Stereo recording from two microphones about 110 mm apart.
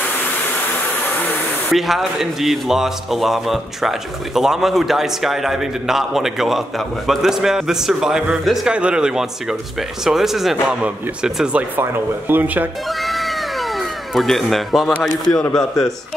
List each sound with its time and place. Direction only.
1.7 s a man's voice: centre (ahead or behind); by 12.6 s 20° right (ahead or behind)
13.0 s cat: centre (ahead or behind)
14.1 s a man's voice: centre (ahead or behind)